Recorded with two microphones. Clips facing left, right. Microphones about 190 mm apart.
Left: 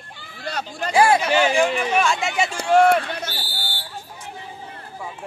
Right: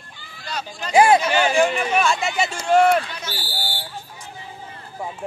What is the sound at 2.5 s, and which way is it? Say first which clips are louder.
Speech: left 1 dB; 55° left (ahead or behind).